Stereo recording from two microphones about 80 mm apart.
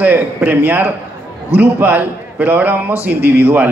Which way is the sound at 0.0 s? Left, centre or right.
Right.